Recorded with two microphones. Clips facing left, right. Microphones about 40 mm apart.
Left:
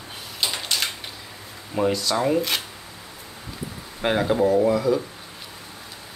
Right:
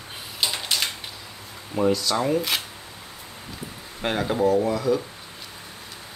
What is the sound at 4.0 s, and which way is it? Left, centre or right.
Speech, centre.